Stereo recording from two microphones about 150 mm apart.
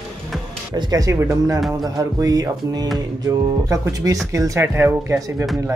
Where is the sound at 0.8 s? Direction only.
25° right (ahead or behind).